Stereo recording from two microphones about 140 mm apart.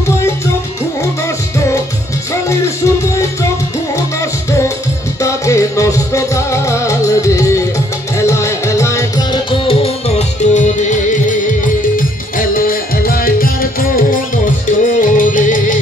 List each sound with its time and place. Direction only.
3.9 s music: 20° left (ahead or behind)
9.5 s music: 40° left (ahead or behind); by 11.3 s 60° left (ahead or behind)
12.4 s music: 90° left; by 15.8 s 70° left (ahead or behind)